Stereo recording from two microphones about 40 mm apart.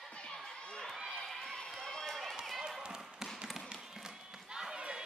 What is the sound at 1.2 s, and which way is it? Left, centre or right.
Run, centre.